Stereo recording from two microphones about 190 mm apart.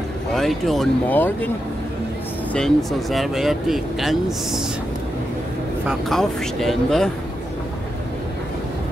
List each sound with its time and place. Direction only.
0.3 s speech: centre (ahead or behind)
2.5 s speech: centre (ahead or behind)
5.9 s speech: centre (ahead or behind)